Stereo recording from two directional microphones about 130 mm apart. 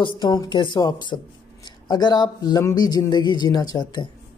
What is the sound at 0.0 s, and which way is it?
A woman's voice, 35° left (ahead or behind).